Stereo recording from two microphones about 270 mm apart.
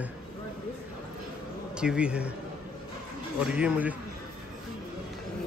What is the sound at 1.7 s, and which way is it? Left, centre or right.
Speech, centre.